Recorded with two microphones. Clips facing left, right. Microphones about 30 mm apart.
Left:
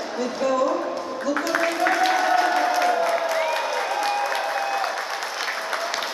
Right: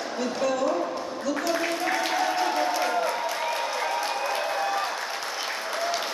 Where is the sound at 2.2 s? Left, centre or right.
Left.